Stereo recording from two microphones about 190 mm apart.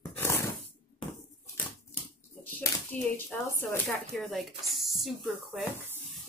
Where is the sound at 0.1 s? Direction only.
15° left (ahead or behind).